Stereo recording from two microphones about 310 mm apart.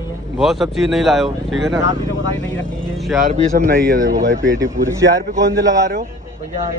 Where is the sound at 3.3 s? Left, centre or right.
Right.